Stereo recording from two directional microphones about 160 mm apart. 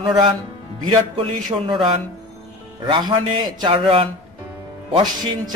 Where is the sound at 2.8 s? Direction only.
30° right (ahead or behind).